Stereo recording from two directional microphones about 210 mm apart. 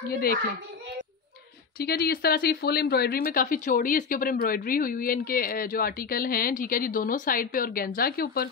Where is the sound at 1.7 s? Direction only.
45° left (ahead or behind).